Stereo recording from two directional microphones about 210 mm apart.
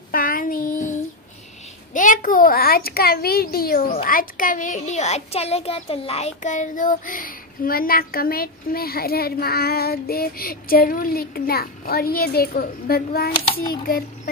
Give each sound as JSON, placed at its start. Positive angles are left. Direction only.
{"t": 0.1, "sound": "child singing", "side_deg": 40}
{"t": 2.0, "sound": "a child's voice", "side_deg": 40}